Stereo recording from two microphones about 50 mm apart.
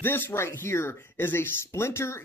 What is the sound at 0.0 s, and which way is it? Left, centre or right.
Speech, left.